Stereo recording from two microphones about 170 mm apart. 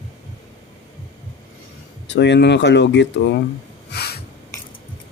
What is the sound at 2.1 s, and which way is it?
Speech, 90° left.